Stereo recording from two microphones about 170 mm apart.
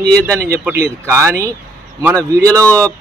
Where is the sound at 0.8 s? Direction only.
15° right (ahead or behind).